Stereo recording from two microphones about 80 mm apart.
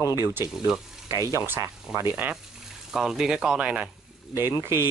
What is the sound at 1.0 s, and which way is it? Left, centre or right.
Speech, right.